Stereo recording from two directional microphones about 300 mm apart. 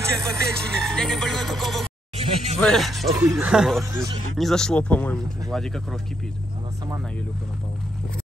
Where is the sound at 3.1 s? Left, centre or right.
Centre.